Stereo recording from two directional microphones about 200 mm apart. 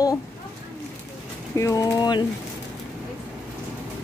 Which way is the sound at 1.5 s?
15° left (ahead or behind).